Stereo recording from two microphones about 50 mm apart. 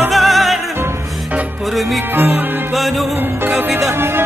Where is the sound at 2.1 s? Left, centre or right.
Right.